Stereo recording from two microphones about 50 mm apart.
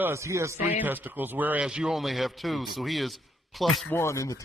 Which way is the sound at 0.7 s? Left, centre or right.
Right.